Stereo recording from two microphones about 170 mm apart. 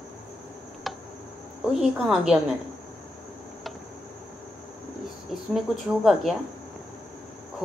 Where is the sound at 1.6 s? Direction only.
5° right (ahead or behind).